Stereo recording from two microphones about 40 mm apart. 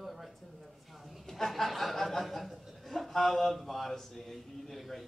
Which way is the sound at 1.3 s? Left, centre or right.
Centre.